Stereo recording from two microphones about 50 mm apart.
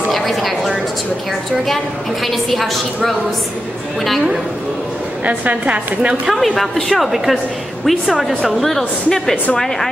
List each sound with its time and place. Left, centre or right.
0.1 s a woman's voice: centre
2.2 s a woman's voice: centre
5.2 s a woman's voice: right
6.3 s a woman's voice: centre